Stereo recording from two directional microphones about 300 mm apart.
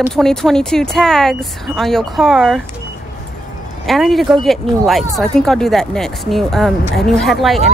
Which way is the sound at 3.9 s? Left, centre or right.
Centre.